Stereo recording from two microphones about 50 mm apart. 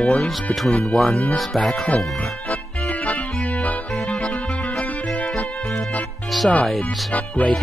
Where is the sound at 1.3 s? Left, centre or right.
Centre.